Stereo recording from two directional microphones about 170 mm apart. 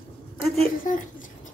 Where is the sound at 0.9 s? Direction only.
50° left (ahead or behind).